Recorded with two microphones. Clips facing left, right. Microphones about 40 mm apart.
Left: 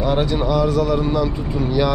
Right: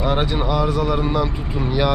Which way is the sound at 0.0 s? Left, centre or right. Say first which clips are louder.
Left 1 dB; centre.